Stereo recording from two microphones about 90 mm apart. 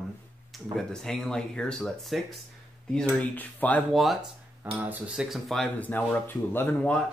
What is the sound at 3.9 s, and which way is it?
Speech, centre (ahead or behind).